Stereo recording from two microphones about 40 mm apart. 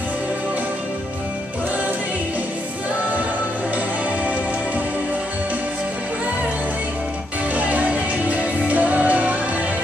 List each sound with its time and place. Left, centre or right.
7.5 s music: right